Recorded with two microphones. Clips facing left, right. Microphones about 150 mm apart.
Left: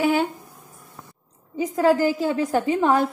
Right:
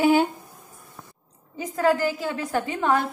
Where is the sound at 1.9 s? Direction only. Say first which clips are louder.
Left 5 dB; 20° left (ahead or behind).